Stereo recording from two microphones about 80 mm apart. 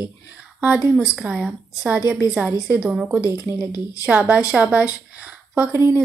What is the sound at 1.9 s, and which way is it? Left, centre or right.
A woman's voice, centre.